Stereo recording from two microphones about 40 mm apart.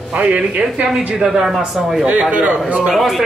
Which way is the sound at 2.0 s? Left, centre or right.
Right.